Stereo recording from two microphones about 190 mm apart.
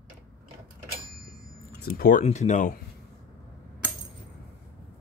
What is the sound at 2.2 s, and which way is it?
Speech, 40° left (ahead or behind).